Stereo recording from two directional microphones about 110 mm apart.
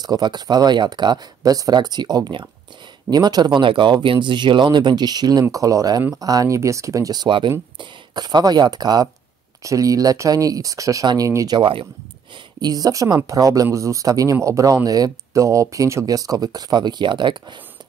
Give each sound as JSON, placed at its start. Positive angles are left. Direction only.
{"t": 0.0, "sound": "speech", "side_deg": -40}
{"t": 11.5, "sound": "speech", "side_deg": -50}
{"t": 12.6, "sound": "speech", "side_deg": -35}